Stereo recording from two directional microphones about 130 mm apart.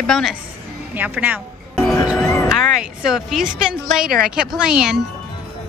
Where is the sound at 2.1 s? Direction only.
5° right (ahead or behind).